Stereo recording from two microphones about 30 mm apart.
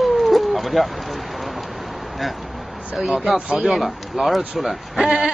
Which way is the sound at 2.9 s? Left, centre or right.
Right.